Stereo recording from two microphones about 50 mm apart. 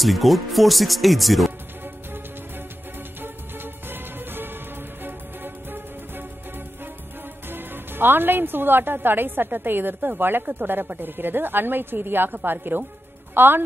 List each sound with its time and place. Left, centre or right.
0.0 s speech: centre
3.2 s music: right
7.4 s speech: right